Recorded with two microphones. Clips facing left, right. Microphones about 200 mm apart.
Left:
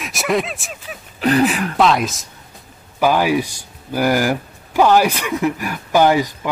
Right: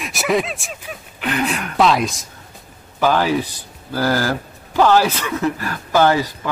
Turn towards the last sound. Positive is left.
turn(degrees=15)  # may be behind; listen again after turning